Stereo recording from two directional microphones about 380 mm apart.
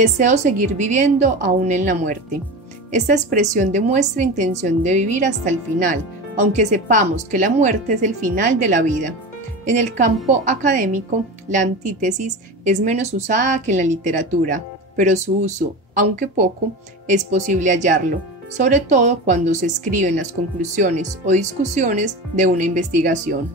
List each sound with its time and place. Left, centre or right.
0.0 s a woman's voice: centre